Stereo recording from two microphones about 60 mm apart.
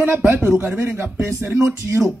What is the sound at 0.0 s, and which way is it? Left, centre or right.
A man's voice, right.